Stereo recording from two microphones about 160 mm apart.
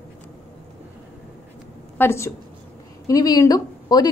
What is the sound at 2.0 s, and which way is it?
A woman's voice, 15° left (ahead or behind).